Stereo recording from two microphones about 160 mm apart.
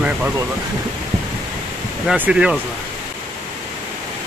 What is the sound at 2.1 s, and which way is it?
Speech, 5° right (ahead or behind).